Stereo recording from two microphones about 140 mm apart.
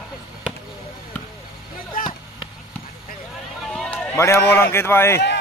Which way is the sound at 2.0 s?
90° left.